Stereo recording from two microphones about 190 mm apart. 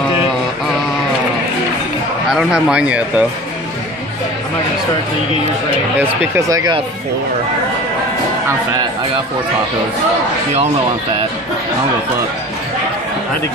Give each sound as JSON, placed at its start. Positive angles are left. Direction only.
{"t": 2.3, "sound": "speech", "side_deg": -5}
{"t": 5.9, "sound": "speech", "side_deg": -15}